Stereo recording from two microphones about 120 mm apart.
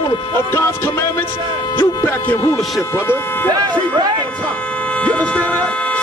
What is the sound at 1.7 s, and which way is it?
Speech, 15° left (ahead or behind).